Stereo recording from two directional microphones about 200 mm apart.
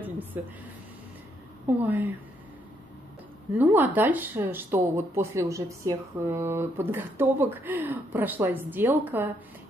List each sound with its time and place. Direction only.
0.0 s a sound: 10° right (ahead or behind)
1.8 s speech: 10° right (ahead or behind)
3.5 s speech: 10° right (ahead or behind)